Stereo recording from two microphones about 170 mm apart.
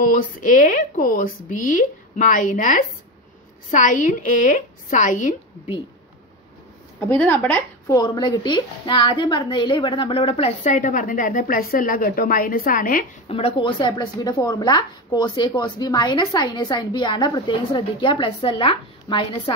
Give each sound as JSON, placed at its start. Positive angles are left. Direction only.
{"t": 0.1, "sound": "speech", "side_deg": 50}
{"t": 7.2, "sound": "speech", "side_deg": 10}
{"t": 7.8, "sound": "a woman's voice", "side_deg": 25}
{"t": 13.3, "sound": "a woman's voice", "side_deg": 35}